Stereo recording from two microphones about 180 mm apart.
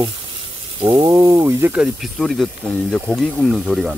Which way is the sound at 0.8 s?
25° right (ahead or behind).